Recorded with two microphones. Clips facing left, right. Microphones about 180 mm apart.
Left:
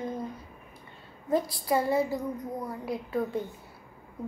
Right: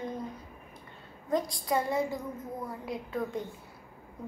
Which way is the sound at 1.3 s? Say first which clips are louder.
Left 3 dB; 5° left (ahead or behind).